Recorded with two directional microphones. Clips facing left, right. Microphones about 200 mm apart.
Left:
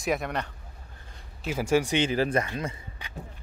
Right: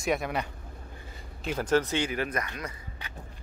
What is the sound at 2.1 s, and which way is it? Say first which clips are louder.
Speech: left 6 dB; 30° left (ahead or behind).